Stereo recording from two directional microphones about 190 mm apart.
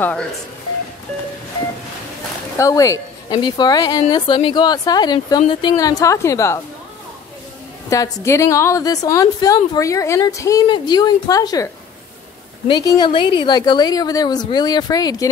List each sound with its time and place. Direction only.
0.0 s speech: 5° left (ahead or behind)
2.5 s speech: 15° left (ahead or behind)
7.9 s a woman's voice: 15° left (ahead or behind)